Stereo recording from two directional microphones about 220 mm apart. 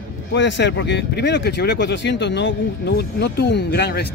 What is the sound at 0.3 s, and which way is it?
Speech, 55° left (ahead or behind).